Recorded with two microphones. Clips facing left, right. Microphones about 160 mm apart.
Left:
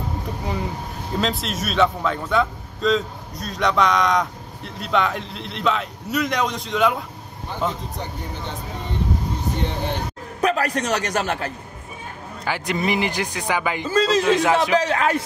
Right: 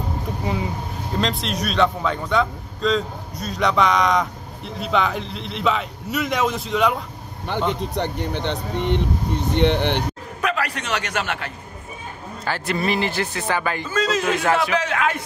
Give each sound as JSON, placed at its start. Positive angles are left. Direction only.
{"t": 0.4, "sound": "a man's voice", "side_deg": 0}
{"t": 7.5, "sound": "speech", "side_deg": -75}
{"t": 10.4, "sound": "a man's voice", "side_deg": 40}
{"t": 12.4, "sound": "speech", "side_deg": 15}
{"t": 13.8, "sound": "a man's voice", "side_deg": 30}
{"t": 14.3, "sound": "speech", "side_deg": 15}
{"t": 14.8, "sound": "a man's voice", "side_deg": 35}